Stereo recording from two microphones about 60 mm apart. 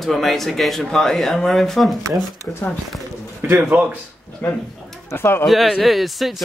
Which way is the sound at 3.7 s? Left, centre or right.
Right.